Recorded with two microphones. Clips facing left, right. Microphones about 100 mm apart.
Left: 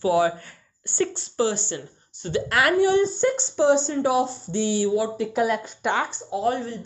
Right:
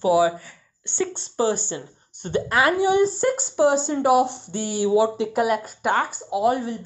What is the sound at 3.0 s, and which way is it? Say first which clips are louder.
Speech: even; 5° right (ahead or behind).